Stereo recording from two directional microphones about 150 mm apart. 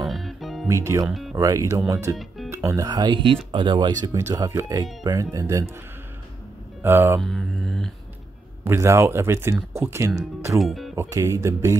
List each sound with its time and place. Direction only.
0.0 s music: centre (ahead or behind)
0.7 s speech: 20° right (ahead or behind)
1.0 s speech: centre (ahead or behind)
1.3 s speech: 20° right (ahead or behind)
2.1 s music: centre (ahead or behind)
2.5 s speech: 20° right (ahead or behind)
6.8 s speech: 15° right (ahead or behind)
7.2 s mantra: centre (ahead or behind)
8.6 s speech: 15° right (ahead or behind)
10.6 s speech: centre (ahead or behind)
11.0 s speech: 20° right (ahead or behind)